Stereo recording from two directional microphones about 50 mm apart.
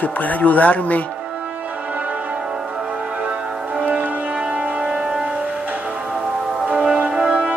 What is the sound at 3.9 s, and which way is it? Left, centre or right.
Music, right.